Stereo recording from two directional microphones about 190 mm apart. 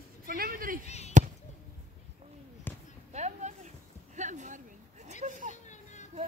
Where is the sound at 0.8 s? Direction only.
35° left (ahead or behind).